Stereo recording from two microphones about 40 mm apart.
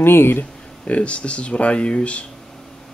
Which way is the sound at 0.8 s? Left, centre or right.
Left.